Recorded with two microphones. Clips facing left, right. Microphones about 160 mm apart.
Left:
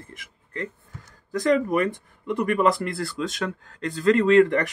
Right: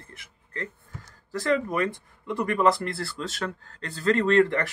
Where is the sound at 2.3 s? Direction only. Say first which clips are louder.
Left 2 dB; 15° left (ahead or behind).